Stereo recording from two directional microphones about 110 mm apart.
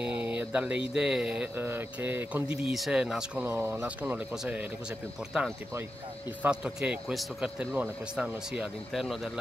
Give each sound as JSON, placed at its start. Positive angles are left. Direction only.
{"t": 0.0, "sound": "speech", "side_deg": -10}
{"t": 3.4, "sound": "speech", "side_deg": -20}